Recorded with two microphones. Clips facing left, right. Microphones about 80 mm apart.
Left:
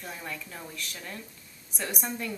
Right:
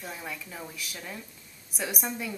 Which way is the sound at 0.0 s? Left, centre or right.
Centre.